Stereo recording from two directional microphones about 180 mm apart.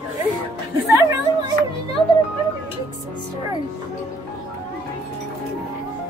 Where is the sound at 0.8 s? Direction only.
15° right (ahead or behind).